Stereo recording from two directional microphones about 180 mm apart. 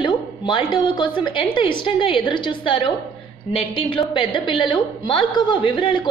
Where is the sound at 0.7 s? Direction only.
25° left (ahead or behind).